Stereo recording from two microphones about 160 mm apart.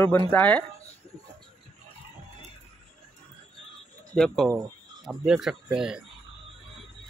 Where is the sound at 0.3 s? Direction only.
10° left (ahead or behind).